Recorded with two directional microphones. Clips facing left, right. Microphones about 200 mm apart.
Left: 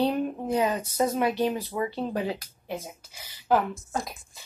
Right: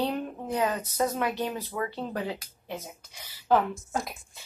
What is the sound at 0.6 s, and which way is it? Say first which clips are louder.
A woman's voice: left 1 dB; 20° left (ahead or behind).